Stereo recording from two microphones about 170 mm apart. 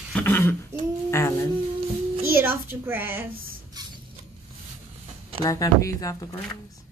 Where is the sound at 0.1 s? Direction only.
10° left (ahead or behind).